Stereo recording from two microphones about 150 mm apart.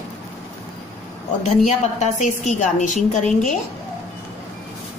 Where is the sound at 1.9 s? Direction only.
50° left (ahead or behind).